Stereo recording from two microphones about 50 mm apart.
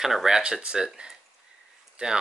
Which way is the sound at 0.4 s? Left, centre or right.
Right.